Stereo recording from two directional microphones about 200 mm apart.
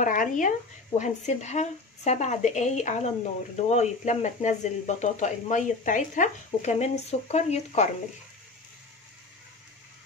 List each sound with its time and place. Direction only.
0.0 s speech: 40° left (ahead or behind)